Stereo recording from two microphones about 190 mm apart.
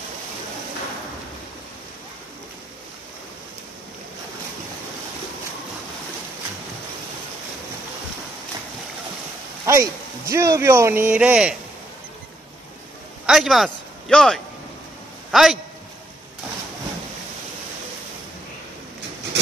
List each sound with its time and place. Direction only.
9.7 s speech: 15° right (ahead or behind)
13.3 s speech: centre (ahead or behind)